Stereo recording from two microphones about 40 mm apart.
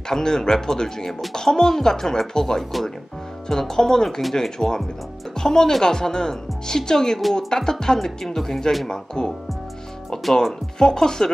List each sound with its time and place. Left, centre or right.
0.1 s a woman's voice: centre
10.8 s a woman's voice: centre